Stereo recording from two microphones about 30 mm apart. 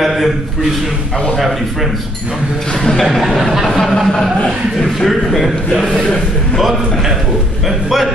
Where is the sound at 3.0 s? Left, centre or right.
Centre.